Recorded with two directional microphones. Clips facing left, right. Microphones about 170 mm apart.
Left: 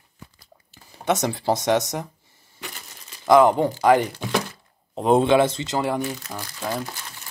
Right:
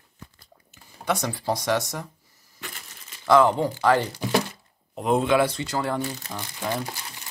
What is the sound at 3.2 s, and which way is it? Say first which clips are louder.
Speech: left 3 dB; 15° left (ahead or behind).